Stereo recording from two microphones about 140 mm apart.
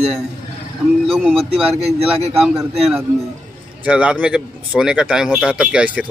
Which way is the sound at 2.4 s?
Centre (ahead or behind).